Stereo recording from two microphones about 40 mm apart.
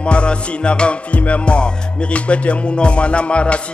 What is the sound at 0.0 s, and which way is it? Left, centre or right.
Music, left.